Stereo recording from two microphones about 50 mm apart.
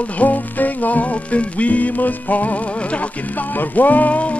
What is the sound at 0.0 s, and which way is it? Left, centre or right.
Music, left.